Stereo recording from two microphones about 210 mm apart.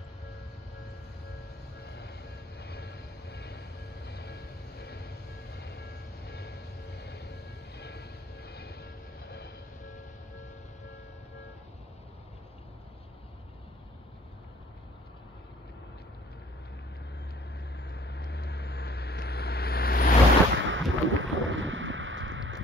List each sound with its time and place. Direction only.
1.9 s vehicle: 50° left (ahead or behind)
17.7 s vehicle: 50° left (ahead or behind)
20.5 s a sound: 65° right (ahead or behind)